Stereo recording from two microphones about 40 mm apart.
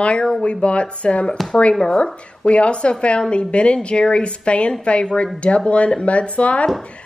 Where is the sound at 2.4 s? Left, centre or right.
Left.